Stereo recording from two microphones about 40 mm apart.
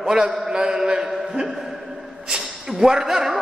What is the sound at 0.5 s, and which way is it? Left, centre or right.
A man's voice, centre.